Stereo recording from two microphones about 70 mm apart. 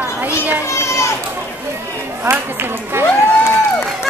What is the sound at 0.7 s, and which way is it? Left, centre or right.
Children playing, left.